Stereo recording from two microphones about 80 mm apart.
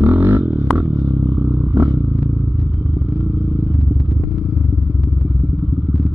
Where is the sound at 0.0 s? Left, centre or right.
Right.